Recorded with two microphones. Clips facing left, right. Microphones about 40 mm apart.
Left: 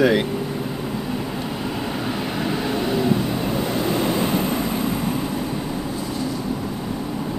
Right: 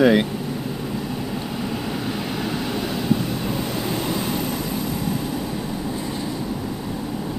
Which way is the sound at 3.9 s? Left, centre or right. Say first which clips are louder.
Left 5 dB; left.